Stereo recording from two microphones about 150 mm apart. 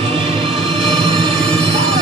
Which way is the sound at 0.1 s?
35° right (ahead or behind).